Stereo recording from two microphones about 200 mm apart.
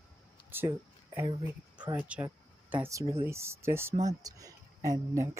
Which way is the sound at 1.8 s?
10° right (ahead or behind).